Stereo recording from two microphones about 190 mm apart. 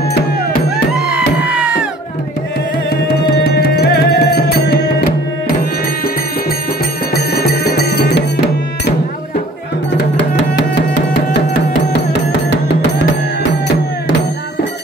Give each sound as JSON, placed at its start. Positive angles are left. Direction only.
{"t": 1.4, "sound": "music", "side_deg": -5}
{"t": 3.3, "sound": "music", "side_deg": 55}
{"t": 7.2, "sound": "music", "side_deg": 55}